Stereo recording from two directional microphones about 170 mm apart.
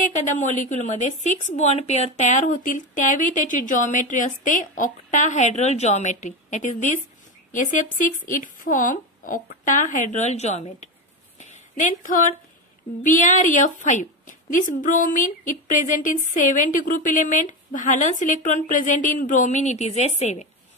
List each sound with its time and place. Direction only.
0.0 s a woman's voice: 45° left (ahead or behind)
11.3 s a sound: 45° left (ahead or behind)
13.0 s a woman's voice: 50° left (ahead or behind)